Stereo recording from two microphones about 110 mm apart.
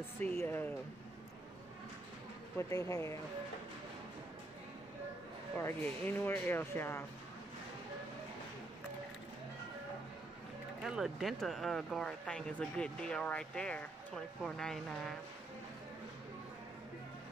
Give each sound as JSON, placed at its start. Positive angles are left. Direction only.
{"t": 0.2, "sound": "speech", "side_deg": 20}
{"t": 2.7, "sound": "speech", "side_deg": 30}
{"t": 5.6, "sound": "speech", "side_deg": 15}
{"t": 10.8, "sound": "speech", "side_deg": -5}